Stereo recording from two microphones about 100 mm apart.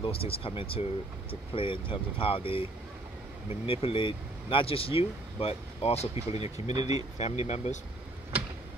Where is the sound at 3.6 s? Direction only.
70° left (ahead or behind); by 6.0 s 90° left.